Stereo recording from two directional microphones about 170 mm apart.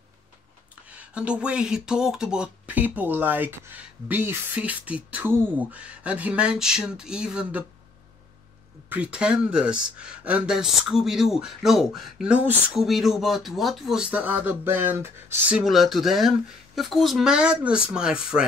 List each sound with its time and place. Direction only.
0.8 s speech: 5° right (ahead or behind)
8.8 s speech: 10° right (ahead or behind)